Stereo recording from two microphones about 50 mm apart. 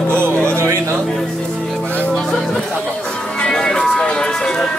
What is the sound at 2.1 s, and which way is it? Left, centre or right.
Music, centre.